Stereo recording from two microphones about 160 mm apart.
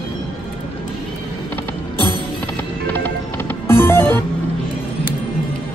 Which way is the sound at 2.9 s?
10° left (ahead or behind).